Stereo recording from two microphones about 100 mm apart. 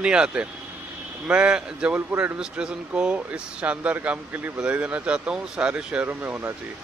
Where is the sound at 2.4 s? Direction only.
10° right (ahead or behind).